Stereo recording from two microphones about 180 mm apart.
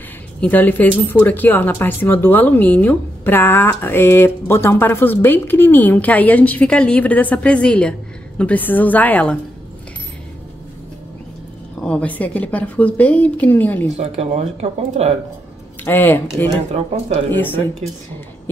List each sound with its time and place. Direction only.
0.4 s speech: 10° left (ahead or behind)
11.8 s speech: 5° left (ahead or behind)
13.9 s speech: 35° right (ahead or behind)
15.8 s speech: 10° left (ahead or behind)